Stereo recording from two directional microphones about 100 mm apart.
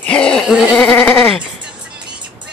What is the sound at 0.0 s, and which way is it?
Bleat, 10° left (ahead or behind).